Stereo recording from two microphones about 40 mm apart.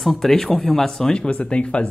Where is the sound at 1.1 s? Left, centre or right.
Left.